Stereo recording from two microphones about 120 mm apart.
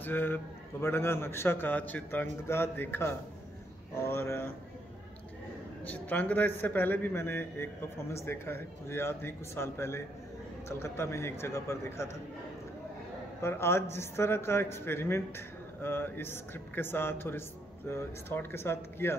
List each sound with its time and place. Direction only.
0.0 s a man's voice: 15° left (ahead or behind)
5.9 s a man's voice: 15° left (ahead or behind)
13.4 s speech: 20° left (ahead or behind)